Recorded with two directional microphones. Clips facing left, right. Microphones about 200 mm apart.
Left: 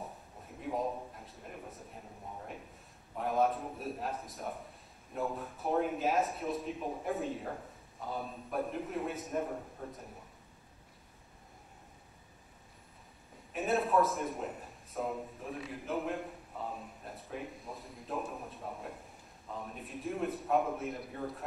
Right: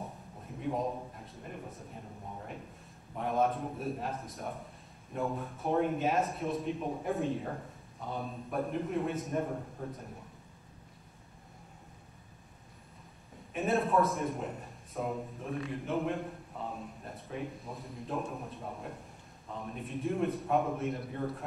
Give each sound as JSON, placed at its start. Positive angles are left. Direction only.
{"t": 0.6, "sound": "a man's voice", "side_deg": 0}
{"t": 13.5, "sound": "a man's voice", "side_deg": 0}